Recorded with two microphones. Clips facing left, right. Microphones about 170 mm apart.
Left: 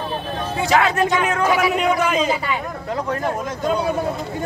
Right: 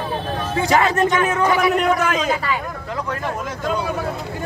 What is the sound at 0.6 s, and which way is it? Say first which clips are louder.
Speech: right 1 dB; centre (ahead or behind).